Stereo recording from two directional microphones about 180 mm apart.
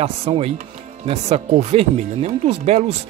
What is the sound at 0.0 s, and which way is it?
Speech, 35° right (ahead or behind).